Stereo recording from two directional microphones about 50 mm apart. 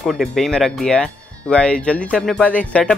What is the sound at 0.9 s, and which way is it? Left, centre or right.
Speech, left.